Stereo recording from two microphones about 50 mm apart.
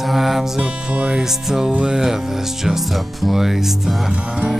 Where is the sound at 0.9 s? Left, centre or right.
Centre.